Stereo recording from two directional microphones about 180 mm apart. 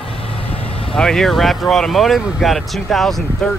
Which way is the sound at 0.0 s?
30° left (ahead or behind).